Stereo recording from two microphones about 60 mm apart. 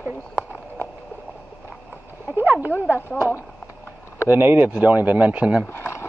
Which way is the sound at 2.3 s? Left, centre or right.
Right.